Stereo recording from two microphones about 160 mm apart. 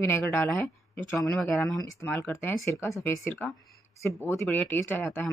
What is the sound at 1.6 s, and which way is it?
Speech, 20° left (ahead or behind).